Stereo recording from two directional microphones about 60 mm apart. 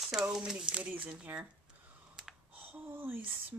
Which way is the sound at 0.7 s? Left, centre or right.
Centre.